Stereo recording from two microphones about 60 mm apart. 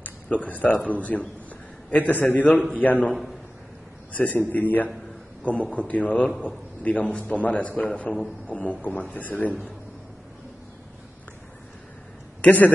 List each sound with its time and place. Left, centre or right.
0.4 s a man's voice: left
12.4 s a man's voice: left